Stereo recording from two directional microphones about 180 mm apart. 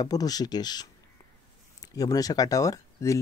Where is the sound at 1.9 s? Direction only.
20° left (ahead or behind).